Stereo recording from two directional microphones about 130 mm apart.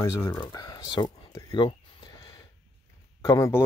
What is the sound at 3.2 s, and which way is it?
Speech, 25° left (ahead or behind).